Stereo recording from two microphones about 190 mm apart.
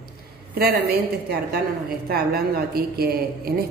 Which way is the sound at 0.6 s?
55° right (ahead or behind).